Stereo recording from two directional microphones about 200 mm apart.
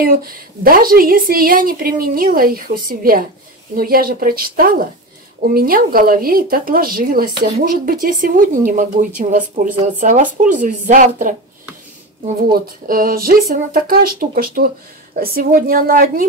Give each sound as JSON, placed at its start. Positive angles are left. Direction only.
{"t": 0.0, "sound": "a woman's voice", "side_deg": -45}
{"t": 12.5, "sound": "a woman's voice", "side_deg": -45}